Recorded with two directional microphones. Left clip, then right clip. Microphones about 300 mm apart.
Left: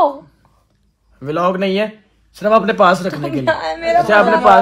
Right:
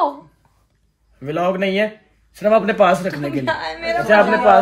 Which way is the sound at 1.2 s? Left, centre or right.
Centre.